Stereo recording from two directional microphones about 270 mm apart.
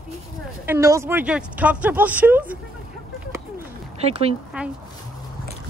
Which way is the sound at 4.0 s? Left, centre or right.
Right.